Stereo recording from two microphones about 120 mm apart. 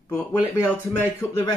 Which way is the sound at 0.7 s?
20° left (ahead or behind).